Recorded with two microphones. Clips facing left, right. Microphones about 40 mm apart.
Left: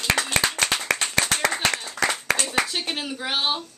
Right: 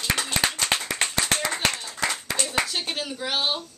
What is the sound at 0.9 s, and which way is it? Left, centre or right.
Clapping, left.